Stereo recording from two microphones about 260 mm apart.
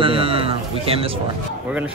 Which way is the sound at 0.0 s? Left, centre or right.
Right.